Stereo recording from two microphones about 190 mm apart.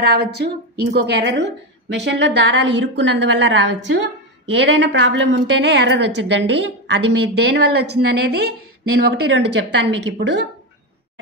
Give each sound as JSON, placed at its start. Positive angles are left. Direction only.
{"t": 0.0, "sound": "a woman's voice", "side_deg": -60}